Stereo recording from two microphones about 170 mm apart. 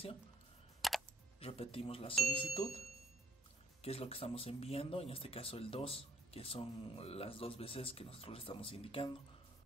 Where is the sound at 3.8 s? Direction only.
35° left (ahead or behind).